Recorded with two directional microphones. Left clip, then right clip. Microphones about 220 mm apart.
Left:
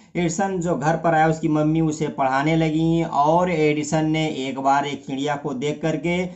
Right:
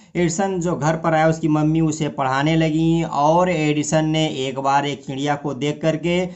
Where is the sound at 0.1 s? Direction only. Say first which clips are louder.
Right 2 dB; 35° right (ahead or behind).